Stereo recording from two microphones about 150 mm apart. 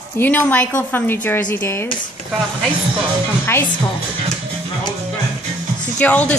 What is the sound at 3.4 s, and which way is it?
Speech, 15° left (ahead or behind).